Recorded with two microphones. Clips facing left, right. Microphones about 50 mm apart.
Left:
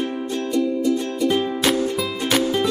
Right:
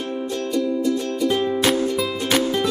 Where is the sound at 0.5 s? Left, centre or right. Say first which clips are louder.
Left 1 dB; centre.